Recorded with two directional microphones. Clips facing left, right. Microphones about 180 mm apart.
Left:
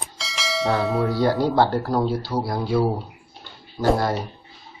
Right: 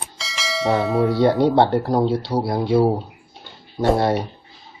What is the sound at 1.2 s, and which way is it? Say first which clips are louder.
Speech: right 3 dB; 25° right (ahead or behind).